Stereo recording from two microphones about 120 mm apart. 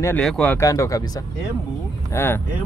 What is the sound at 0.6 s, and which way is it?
Speech, 25° left (ahead or behind).